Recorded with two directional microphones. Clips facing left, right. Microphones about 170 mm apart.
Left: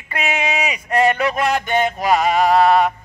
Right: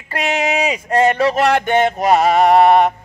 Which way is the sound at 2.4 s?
55° right (ahead or behind).